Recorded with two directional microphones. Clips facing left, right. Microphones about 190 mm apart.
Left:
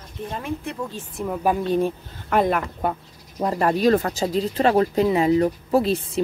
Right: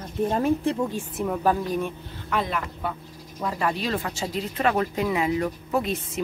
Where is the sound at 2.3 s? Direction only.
50° left (ahead or behind).